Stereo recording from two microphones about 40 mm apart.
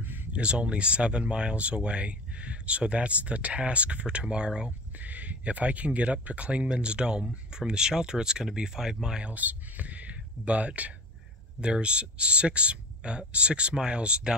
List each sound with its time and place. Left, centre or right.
0.0 s a sound: right
0.3 s speech: right
4.9 s speech: right; by 9.3 s centre
9.3 s speech: right